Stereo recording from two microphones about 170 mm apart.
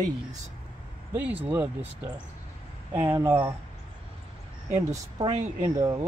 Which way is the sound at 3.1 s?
15° right (ahead or behind).